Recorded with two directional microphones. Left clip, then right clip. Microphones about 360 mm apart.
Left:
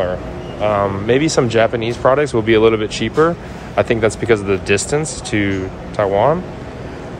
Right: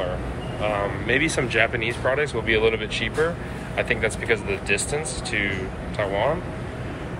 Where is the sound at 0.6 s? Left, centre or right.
Left.